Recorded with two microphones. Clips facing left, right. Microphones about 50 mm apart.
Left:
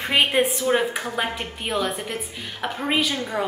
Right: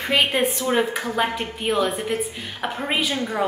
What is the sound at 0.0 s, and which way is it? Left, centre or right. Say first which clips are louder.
Speech: even; centre.